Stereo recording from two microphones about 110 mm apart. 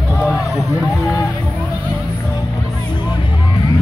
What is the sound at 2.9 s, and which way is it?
Music, 45° left (ahead or behind).